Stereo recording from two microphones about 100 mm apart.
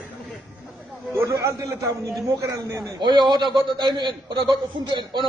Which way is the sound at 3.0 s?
50° right (ahead or behind).